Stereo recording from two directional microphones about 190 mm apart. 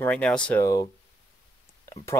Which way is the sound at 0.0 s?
5° left (ahead or behind).